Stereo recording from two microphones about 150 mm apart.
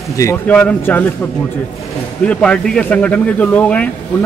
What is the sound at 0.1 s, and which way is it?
Speech, 20° left (ahead or behind).